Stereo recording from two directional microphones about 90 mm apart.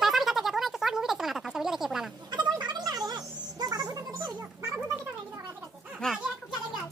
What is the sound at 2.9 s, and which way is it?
Music, 50° right (ahead or behind).